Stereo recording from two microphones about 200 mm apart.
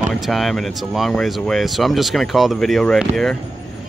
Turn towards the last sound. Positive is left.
turn(degrees=0)  # may be behind; listen again after turning